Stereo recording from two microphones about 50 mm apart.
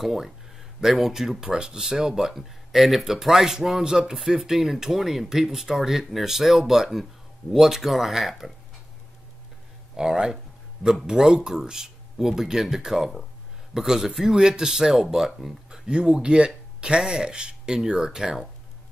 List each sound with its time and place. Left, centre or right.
0.0 s speech: centre
9.9 s a sound: centre
11.1 s speech: centre
15.7 s speech: centre